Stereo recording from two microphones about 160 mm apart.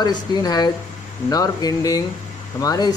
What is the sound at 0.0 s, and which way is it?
Speech, 25° left (ahead or behind).